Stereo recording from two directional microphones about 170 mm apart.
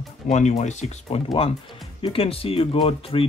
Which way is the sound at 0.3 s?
40° left (ahead or behind).